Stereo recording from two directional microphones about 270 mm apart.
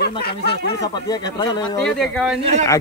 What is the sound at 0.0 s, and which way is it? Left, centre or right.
Speech, left.